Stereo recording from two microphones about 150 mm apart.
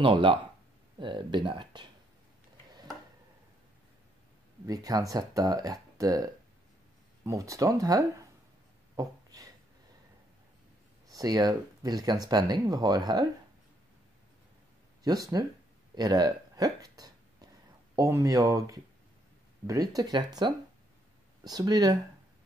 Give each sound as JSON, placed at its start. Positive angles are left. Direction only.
{"t": 0.0, "sound": "speech", "side_deg": -35}
{"t": 4.6, "sound": "speech", "side_deg": -25}
{"t": 8.9, "sound": "a sound", "side_deg": -25}
{"t": 11.1, "sound": "speech", "side_deg": -25}
{"t": 15.0, "sound": "speech", "side_deg": -25}
{"t": 15.9, "sound": "hiccup", "side_deg": -25}
{"t": 17.9, "sound": "speech", "side_deg": -20}